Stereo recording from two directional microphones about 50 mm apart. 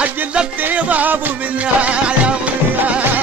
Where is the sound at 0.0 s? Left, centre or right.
Right.